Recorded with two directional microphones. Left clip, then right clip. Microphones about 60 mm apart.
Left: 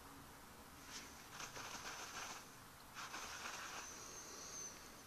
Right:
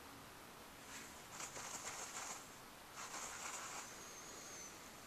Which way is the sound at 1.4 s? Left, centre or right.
Right.